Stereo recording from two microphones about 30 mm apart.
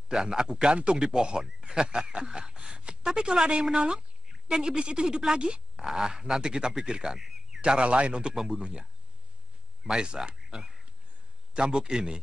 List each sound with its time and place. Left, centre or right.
0.1 s speech: right
4.3 s speech: right
5.8 s speech: centre
7.2 s a sound: centre
7.6 s speech: right
8.4 s speech: centre
10.0 s speech: right
10.3 s a sound: centre
11.5 s speech: right